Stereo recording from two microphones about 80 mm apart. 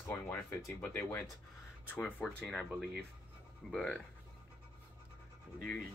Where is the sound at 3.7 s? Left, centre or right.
Centre.